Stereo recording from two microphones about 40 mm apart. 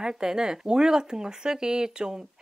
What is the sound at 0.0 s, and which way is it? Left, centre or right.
Speech, centre.